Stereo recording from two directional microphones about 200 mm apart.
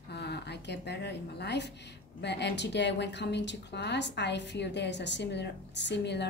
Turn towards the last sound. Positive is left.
turn(degrees=60)  # may be behind; listen again after turning